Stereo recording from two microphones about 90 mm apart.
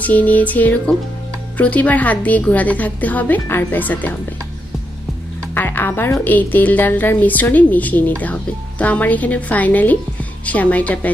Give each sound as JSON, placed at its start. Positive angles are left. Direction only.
{"t": 0.0, "sound": "a woman's voice", "side_deg": 20}
{"t": 5.5, "sound": "music", "side_deg": 20}
{"t": 6.2, "sound": "a woman's voice", "side_deg": 20}